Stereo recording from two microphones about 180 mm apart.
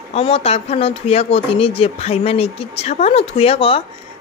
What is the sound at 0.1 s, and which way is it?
Speech, 35° left (ahead or behind).